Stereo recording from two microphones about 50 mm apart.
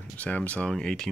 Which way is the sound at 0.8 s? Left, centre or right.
Centre.